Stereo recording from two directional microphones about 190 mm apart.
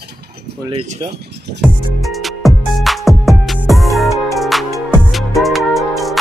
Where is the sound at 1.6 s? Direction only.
Centre (ahead or behind).